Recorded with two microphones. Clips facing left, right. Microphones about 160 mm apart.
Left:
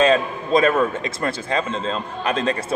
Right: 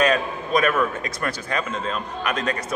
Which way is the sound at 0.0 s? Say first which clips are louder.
Left 4 dB; 25° left (ahead or behind).